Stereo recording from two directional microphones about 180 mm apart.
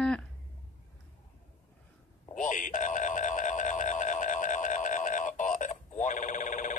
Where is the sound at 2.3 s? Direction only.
45° left (ahead or behind).